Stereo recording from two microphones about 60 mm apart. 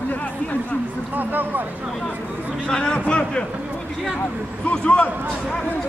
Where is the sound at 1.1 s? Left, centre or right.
Right.